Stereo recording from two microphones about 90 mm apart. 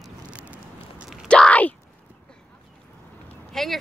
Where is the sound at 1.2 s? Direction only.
10° left (ahead or behind).